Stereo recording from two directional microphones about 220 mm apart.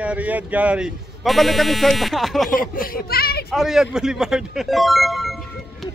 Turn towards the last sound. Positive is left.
turn(degrees=0)  # may be behind; listen again after turning